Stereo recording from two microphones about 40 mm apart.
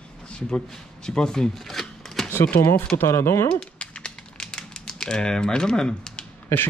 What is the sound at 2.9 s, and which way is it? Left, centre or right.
Speech, left.